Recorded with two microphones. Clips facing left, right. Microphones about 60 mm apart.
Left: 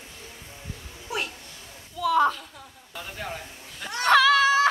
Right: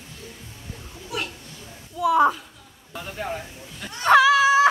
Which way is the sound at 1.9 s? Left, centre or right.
Centre.